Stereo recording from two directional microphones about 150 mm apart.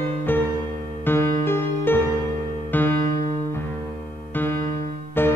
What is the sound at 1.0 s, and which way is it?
Music, 15° left (ahead or behind).